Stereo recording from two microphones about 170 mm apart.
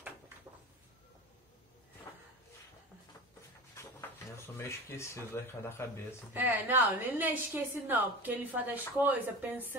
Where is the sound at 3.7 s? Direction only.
15° left (ahead or behind).